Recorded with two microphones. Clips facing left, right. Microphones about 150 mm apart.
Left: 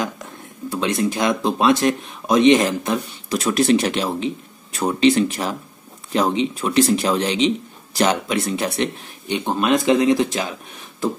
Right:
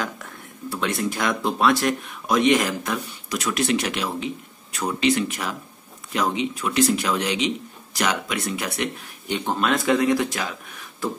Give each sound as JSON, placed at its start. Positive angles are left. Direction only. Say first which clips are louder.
{"t": 0.0, "sound": "speech", "louder": "left 4 dB", "side_deg": 20}
{"t": 9.5, "sound": "speech", "louder": "left 4 dB", "side_deg": 15}